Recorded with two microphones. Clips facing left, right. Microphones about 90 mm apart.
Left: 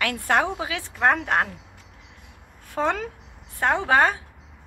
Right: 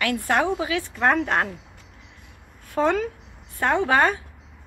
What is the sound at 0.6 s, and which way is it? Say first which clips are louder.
Speech: right 1 dB; 90° left.